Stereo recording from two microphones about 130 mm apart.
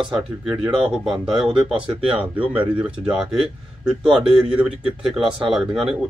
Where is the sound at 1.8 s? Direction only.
40° right (ahead or behind).